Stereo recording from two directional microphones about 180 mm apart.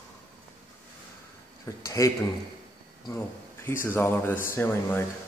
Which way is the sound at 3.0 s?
15° left (ahead or behind).